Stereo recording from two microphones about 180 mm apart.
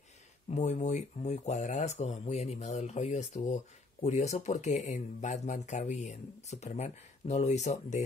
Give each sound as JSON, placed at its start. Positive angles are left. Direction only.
{"t": 0.5, "sound": "speech", "side_deg": 40}